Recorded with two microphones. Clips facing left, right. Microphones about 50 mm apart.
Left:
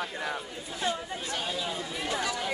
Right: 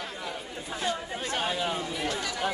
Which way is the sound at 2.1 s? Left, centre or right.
Left.